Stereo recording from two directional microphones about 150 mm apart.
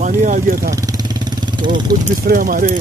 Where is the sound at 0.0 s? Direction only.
60° right (ahead or behind).